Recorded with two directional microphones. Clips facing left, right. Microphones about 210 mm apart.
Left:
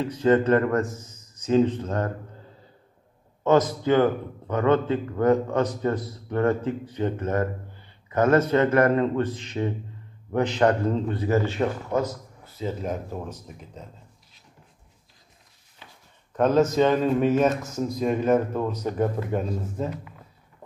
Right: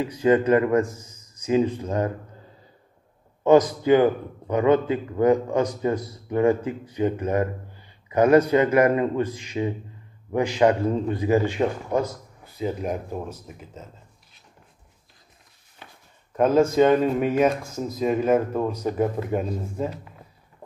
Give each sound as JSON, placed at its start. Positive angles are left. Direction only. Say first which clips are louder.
{"t": 0.0, "sound": "a man's voice", "louder": "right 1 dB", "side_deg": -10}
{"t": 3.4, "sound": "a man's voice", "louder": "right 3 dB", "side_deg": -15}
{"t": 15.8, "sound": "a sound", "louder": "right 3 dB", "side_deg": -55}
{"t": 16.3, "sound": "a man's voice", "louder": "right 2 dB", "side_deg": -10}